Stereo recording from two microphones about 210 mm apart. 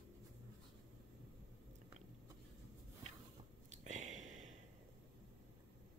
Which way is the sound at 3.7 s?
35° right (ahead or behind).